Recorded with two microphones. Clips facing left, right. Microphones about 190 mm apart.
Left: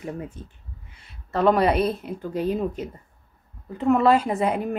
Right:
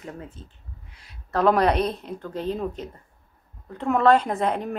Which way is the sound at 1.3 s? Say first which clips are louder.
Left 1 dB; centre (ahead or behind).